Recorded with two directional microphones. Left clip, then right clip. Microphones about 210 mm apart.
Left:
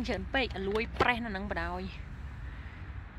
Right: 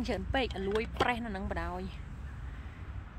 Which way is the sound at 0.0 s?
10° right (ahead or behind).